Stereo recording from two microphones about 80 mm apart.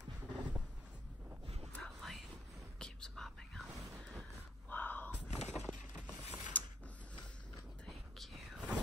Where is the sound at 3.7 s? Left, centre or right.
Right.